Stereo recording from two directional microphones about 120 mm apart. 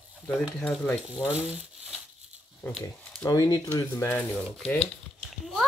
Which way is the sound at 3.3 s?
35° left (ahead or behind).